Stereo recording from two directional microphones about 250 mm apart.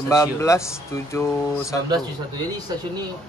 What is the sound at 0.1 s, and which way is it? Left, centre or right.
Speech, centre.